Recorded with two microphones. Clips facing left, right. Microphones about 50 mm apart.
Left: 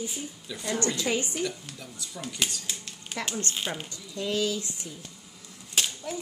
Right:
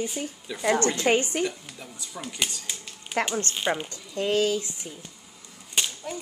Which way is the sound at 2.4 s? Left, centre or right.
Centre.